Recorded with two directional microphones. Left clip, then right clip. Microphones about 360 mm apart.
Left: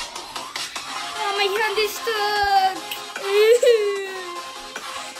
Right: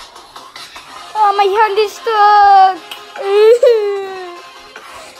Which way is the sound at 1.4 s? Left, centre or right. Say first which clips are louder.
Right 10 dB; centre.